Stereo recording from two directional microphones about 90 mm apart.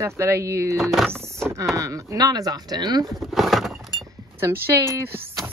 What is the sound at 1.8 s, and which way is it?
Speech, 35° right (ahead or behind).